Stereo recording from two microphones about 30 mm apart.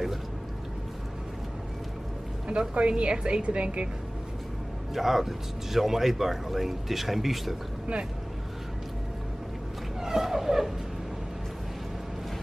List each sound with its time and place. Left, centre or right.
2.4 s a woman's voice: right
4.9 s speech: centre
10.0 s a sound: centre